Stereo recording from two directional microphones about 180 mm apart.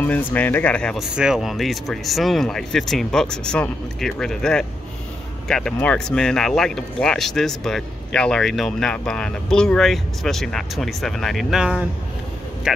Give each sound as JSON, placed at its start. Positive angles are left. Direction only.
{"t": 0.0, "sound": "speech", "side_deg": 10}